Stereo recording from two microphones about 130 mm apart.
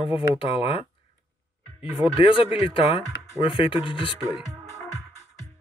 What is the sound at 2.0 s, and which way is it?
Speech, 45° left (ahead or behind).